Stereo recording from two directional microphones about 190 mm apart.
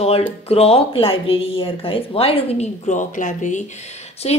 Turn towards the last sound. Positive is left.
turn(degrees=35)  # may be behind; listen again after turning